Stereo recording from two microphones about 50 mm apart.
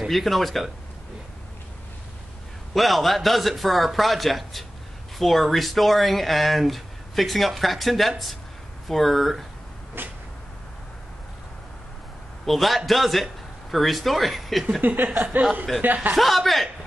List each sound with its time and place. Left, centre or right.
0.1 s speech: centre
2.7 s speech: centre
10.0 s cat: right
12.4 s a man's voice: centre
14.8 s a sound: right
16.2 s speech: centre